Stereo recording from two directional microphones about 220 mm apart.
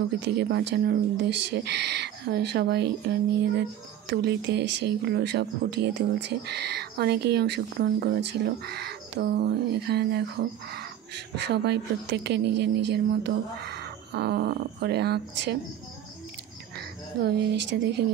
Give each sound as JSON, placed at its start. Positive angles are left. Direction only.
{"t": 0.2, "sound": "speech", "side_deg": -50}
{"t": 17.1, "sound": "speech", "side_deg": -45}